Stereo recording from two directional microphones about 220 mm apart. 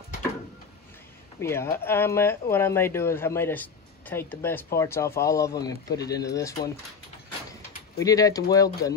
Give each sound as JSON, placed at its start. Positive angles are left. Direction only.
{"t": 1.4, "sound": "speech", "side_deg": 10}
{"t": 8.0, "sound": "speech", "side_deg": 15}